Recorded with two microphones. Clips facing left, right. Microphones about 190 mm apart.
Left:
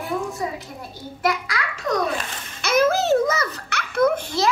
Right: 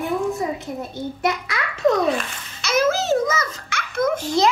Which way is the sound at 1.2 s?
25° right (ahead or behind).